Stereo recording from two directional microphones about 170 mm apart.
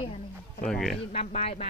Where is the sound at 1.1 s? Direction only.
40° left (ahead or behind).